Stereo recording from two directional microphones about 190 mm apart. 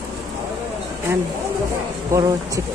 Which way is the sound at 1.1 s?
10° right (ahead or behind).